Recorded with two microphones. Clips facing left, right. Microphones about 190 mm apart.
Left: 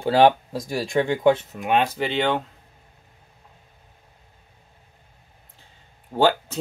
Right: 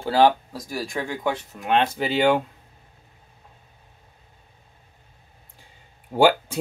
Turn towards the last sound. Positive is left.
turn(degrees=-10)  # may be behind; listen again after turning